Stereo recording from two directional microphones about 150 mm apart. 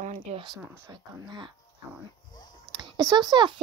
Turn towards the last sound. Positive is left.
turn(degrees=-30)  # may be behind; listen again after turning